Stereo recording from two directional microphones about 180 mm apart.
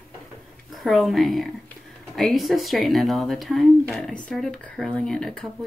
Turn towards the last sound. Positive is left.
turn(degrees=5)  # may be behind; listen again after turning